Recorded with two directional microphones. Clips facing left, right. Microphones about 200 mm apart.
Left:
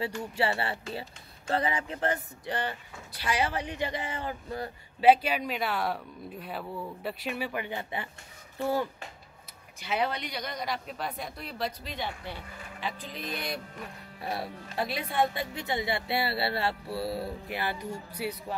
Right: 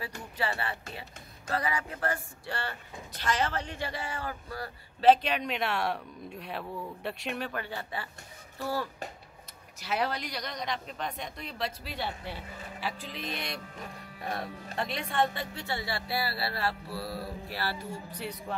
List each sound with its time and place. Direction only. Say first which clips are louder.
0.0 s speech: left 5 dB; 30° left (ahead or behind)
5.0 s speech: left 1 dB; 10° left (ahead or behind)
9.8 s speech: left 1 dB; centre (ahead or behind)